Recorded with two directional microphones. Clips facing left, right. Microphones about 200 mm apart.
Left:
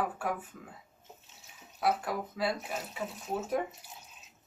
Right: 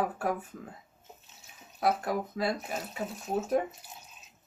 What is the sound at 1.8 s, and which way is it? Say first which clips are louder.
Speech: right 2 dB; 45° right (ahead or behind).